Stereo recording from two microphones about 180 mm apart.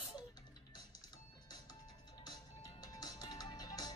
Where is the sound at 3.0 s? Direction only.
25° left (ahead or behind).